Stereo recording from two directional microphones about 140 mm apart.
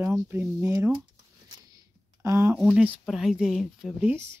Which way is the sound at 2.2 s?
20° right (ahead or behind).